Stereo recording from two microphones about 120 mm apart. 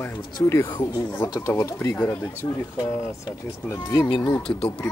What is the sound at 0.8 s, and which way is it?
Speech, 35° left (ahead or behind).